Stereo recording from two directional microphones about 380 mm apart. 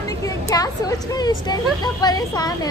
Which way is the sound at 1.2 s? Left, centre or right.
Centre.